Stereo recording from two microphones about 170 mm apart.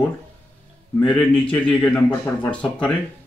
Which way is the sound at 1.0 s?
10° left (ahead or behind).